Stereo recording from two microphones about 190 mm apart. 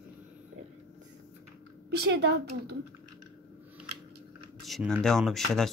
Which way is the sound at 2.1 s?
65° right (ahead or behind).